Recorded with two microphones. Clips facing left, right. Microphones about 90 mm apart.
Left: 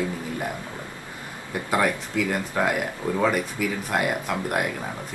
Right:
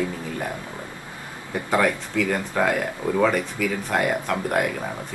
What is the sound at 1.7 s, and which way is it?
Speech, 10° left (ahead or behind).